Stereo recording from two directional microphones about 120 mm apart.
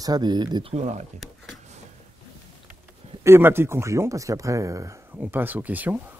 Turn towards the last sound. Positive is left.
turn(degrees=-15)  # may be behind; listen again after turning